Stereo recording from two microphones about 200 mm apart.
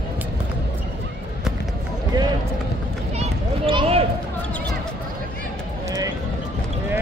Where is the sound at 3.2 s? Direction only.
30° right (ahead or behind).